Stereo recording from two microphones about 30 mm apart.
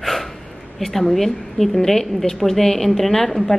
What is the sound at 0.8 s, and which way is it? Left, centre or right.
A woman's voice, centre.